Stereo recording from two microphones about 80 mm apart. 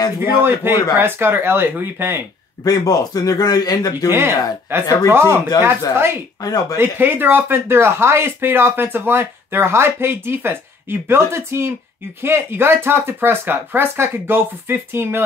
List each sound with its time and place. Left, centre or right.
0.2 s speech: right
2.6 s speech: left
4.1 s speech: right
6.4 s speech: left
6.8 s speech: right